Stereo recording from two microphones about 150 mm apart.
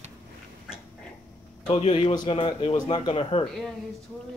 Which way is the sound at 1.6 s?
40° left (ahead or behind).